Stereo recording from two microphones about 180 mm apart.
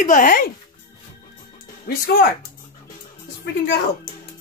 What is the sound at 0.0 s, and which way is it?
Speech, 45° left (ahead or behind).